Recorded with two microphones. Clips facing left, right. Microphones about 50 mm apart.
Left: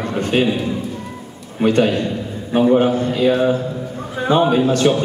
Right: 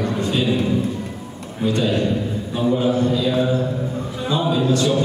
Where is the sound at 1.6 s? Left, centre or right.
Left.